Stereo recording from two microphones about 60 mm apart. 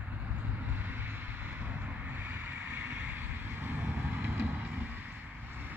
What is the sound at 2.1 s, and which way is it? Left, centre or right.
Vehicle, right.